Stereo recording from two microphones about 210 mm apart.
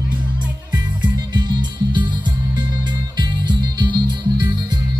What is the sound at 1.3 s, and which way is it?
Music, 20° right (ahead or behind).